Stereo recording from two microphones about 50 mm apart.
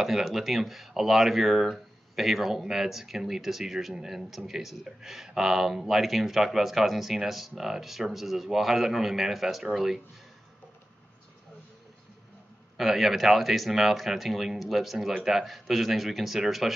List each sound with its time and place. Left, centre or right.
0.0 s speech: centre
12.7 s speech: centre